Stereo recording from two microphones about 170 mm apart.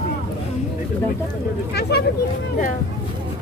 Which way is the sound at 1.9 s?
70° left (ahead or behind).